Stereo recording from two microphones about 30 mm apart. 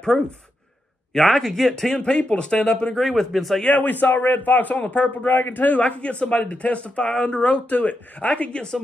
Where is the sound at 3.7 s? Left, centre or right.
Left.